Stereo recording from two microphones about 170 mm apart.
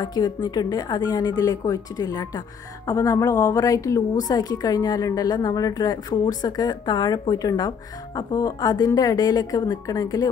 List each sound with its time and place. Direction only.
0.0 s a woman's voice: 25° left (ahead or behind)